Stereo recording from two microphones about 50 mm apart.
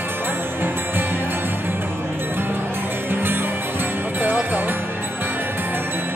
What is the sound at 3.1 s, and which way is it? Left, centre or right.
Music, right.